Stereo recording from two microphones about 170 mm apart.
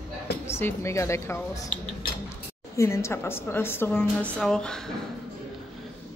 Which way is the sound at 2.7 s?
15° left (ahead or behind).